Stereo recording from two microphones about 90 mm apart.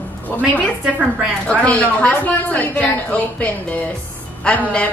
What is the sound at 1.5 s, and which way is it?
A woman's voice, 15° left (ahead or behind).